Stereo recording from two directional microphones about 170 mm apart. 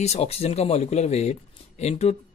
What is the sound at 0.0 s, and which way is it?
Speech, 40° left (ahead or behind).